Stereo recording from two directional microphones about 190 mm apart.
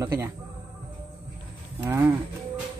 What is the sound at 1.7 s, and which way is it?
Speech, 15° right (ahead or behind).